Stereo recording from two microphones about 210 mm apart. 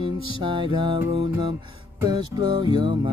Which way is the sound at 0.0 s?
25° right (ahead or behind).